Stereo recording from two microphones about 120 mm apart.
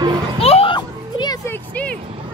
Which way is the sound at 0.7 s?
35° left (ahead or behind).